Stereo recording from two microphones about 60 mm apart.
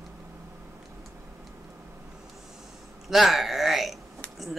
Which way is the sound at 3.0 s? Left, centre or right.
Centre.